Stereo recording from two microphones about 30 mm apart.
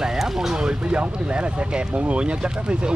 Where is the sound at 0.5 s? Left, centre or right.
Right.